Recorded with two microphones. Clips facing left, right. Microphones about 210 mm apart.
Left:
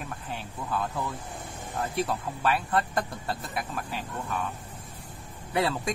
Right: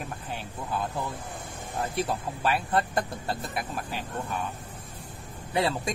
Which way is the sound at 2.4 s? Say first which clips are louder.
Even; 25° right (ahead or behind).